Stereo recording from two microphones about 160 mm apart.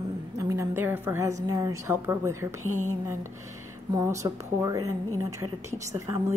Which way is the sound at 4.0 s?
20° right (ahead or behind).